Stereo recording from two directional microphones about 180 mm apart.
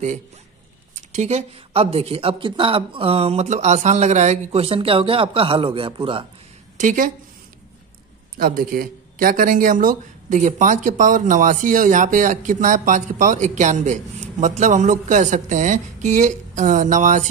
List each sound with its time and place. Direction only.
0.9 s speech: 40° right (ahead or behind)
6.8 s speech: 45° right (ahead or behind)
8.4 s speech: 50° right (ahead or behind)